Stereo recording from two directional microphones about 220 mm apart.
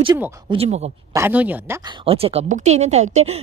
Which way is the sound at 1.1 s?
10° right (ahead or behind).